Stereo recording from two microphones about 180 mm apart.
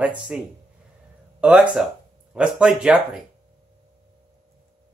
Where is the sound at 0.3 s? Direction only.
5° right (ahead or behind).